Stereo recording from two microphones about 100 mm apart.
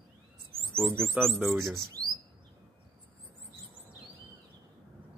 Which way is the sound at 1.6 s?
30° right (ahead or behind).